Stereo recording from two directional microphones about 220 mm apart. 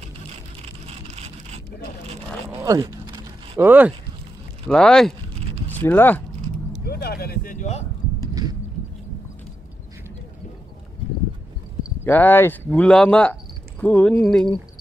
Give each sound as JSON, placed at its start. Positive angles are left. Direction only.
{"t": 0.6, "sound": "vehicle", "side_deg": -30}
{"t": 2.6, "sound": "a sound", "side_deg": -15}
{"t": 3.6, "sound": "speech", "side_deg": -10}
{"t": 4.6, "sound": "speech", "side_deg": 5}
{"t": 6.8, "sound": "a sound", "side_deg": 45}
{"t": 12.0, "sound": "speech", "side_deg": 10}